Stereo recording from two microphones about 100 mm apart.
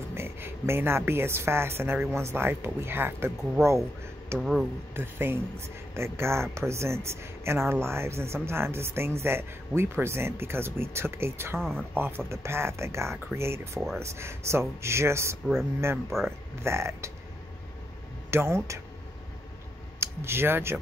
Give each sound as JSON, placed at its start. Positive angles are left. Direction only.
{"t": 0.1, "sound": "a woman's voice", "side_deg": -25}
{"t": 3.6, "sound": "speech", "side_deg": 5}
{"t": 4.9, "sound": "speech", "side_deg": -20}
{"t": 16.1, "sound": "speech", "side_deg": 0}
{"t": 16.6, "sound": "speech", "side_deg": -25}
{"t": 18.3, "sound": "speech", "side_deg": -25}
{"t": 20.0, "sound": "speech", "side_deg": -25}